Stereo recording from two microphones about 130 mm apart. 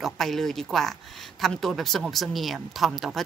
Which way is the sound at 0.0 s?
Centre (ahead or behind).